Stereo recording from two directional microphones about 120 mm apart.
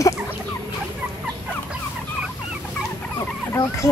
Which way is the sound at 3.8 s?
30° left (ahead or behind).